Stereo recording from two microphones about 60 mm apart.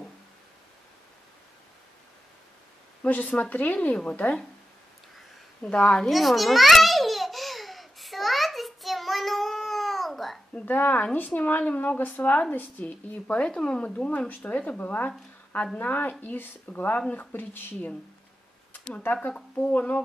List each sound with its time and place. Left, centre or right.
3.0 s speech: left
5.6 s a woman's voice: centre
6.0 s babbling: centre
10.5 s speech: left
19.7 s speech: left